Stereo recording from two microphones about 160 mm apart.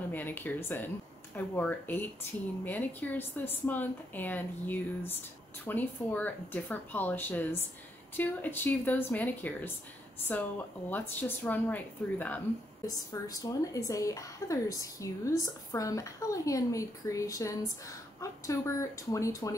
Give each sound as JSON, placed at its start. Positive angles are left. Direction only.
{"t": 0.1, "sound": "a woman's voice", "side_deg": 10}
{"t": 12.8, "sound": "a woman's voice", "side_deg": 20}